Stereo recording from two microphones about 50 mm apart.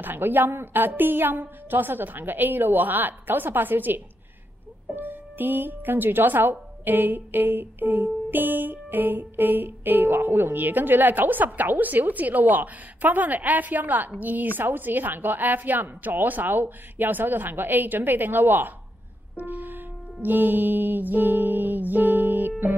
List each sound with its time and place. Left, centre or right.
0.0 s speech: right
19.3 s music: right
20.2 s speech: right